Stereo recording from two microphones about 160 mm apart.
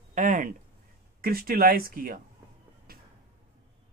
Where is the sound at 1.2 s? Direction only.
65° right (ahead or behind).